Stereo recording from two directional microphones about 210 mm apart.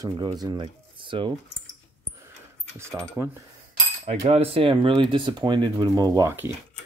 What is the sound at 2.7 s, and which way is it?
Speech, 15° right (ahead or behind).